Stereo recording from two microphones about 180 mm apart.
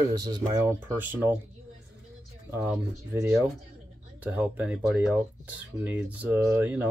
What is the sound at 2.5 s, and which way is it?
Speech, 10° right (ahead or behind).